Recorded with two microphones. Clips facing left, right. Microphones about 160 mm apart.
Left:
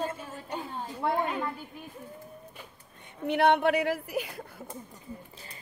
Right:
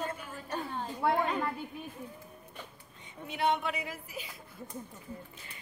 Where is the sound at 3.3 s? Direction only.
65° left (ahead or behind).